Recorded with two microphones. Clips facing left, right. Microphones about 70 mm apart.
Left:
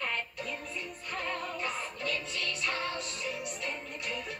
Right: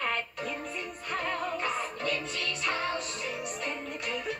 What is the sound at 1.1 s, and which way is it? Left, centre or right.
Music, right.